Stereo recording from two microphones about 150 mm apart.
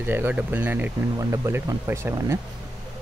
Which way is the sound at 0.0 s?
15° right (ahead or behind).